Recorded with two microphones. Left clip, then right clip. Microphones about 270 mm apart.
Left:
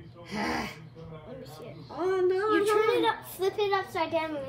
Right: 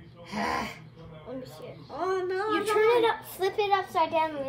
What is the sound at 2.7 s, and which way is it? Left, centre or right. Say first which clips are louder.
A child's voice: right 2 dB; centre.